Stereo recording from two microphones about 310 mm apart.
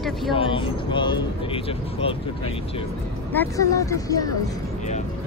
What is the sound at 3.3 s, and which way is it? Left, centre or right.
Speech, centre.